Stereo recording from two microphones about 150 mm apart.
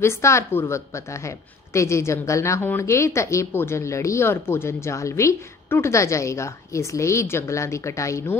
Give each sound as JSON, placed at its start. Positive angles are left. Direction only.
{"t": 0.0, "sound": "a woman's voice", "side_deg": 20}